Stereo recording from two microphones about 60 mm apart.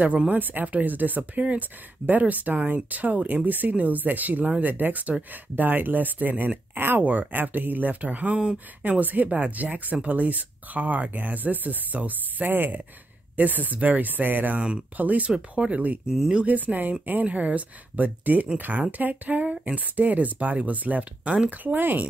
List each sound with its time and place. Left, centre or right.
0.3 s speech: right
14.6 s speech: centre
16.1 s speech: centre
16.4 s speech: right